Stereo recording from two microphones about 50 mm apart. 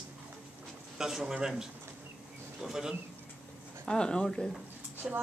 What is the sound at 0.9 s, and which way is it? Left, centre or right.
A man's voice, centre.